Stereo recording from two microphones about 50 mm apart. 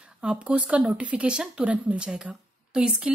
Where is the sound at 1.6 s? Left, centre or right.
Right.